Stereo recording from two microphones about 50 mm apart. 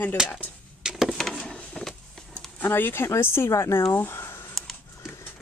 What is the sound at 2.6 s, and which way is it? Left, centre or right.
Speech, left.